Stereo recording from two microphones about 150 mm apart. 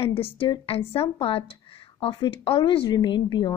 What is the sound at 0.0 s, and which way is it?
A woman's voice, 40° left (ahead or behind).